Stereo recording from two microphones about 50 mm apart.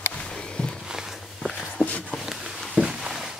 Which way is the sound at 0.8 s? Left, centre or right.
Centre.